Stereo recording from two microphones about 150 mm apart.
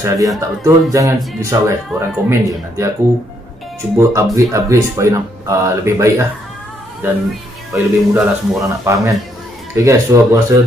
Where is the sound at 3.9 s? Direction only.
20° right (ahead or behind).